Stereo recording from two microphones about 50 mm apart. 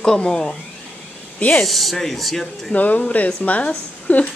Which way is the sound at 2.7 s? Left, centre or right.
Left.